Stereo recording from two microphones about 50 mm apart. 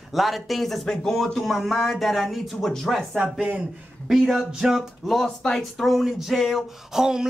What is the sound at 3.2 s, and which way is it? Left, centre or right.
Speech, right.